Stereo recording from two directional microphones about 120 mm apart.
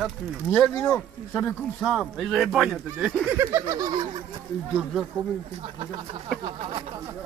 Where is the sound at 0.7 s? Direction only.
5° left (ahead or behind).